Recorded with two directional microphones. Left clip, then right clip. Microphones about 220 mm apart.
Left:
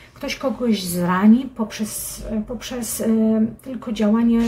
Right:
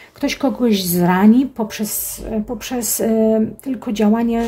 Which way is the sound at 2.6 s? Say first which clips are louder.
Right 5 dB; 50° right (ahead or behind).